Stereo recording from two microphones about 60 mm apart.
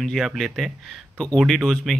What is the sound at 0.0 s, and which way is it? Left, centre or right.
Speech, centre.